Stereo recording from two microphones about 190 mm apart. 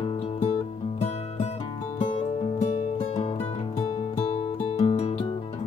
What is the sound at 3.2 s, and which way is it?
Music, 35° left (ahead or behind).